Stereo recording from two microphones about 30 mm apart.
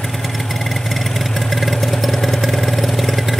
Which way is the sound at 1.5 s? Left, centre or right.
Centre.